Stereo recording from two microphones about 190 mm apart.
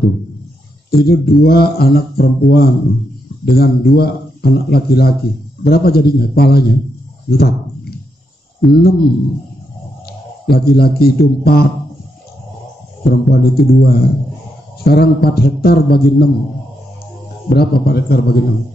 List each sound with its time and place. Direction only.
0.8 s speech: 55° left (ahead or behind)
10.4 s speech: 55° left (ahead or behind)
13.1 s speech: 55° left (ahead or behind)
17.5 s speech: 55° left (ahead or behind)